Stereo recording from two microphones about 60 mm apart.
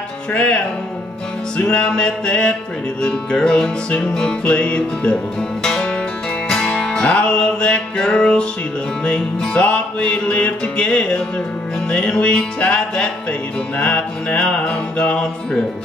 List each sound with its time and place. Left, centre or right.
0.3 s music: left
1.6 s music: centre